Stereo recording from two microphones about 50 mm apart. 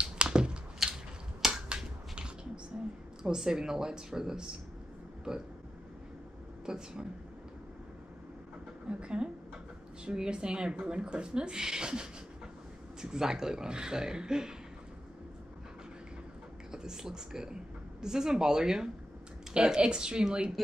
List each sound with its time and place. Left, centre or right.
0.0 s crushing: centre
0.8 s a sound: centre
1.4 s finger snapping: centre
3.3 s speech: centre
6.6 s speech: centre
8.8 s speech: right
16.7 s speech: centre